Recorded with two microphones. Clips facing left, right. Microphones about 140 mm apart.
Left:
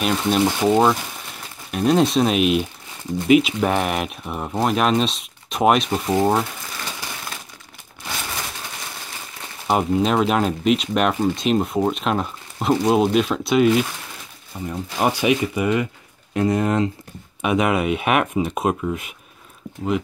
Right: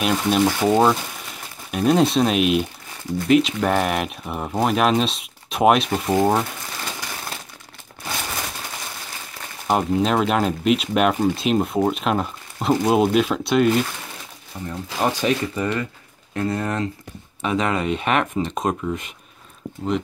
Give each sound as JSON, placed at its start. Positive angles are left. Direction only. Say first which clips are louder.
{"t": 0.0, "sound": "speech", "louder": "even", "side_deg": 0}
{"t": 9.7, "sound": "speech", "louder": "left 1 dB", "side_deg": 0}